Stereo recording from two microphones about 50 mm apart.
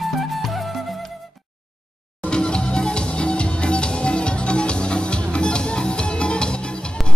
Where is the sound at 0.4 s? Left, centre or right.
Centre.